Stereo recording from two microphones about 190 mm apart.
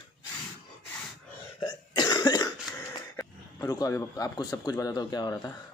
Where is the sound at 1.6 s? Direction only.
20° left (ahead or behind).